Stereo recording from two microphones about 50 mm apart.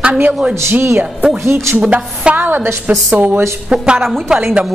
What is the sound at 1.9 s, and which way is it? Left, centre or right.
Speech, right.